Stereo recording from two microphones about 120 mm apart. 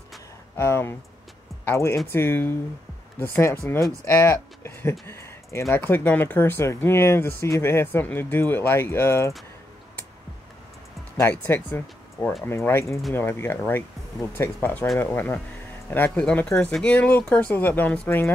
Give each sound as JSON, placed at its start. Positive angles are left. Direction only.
{"t": 0.6, "sound": "speech", "side_deg": 20}
{"t": 11.1, "sound": "speech", "side_deg": 20}